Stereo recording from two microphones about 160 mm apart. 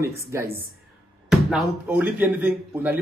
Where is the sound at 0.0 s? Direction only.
15° right (ahead or behind).